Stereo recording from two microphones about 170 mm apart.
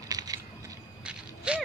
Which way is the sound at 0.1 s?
20° right (ahead or behind).